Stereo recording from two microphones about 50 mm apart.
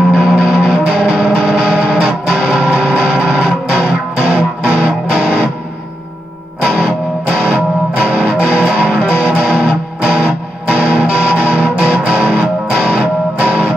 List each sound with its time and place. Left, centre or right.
0.1 s music: centre
7.3 s music: centre
13.0 s music: right